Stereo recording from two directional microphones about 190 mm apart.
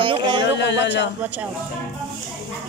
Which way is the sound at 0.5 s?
65° left (ahead or behind).